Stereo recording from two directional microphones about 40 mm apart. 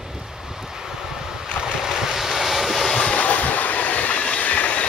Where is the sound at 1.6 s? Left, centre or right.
Centre.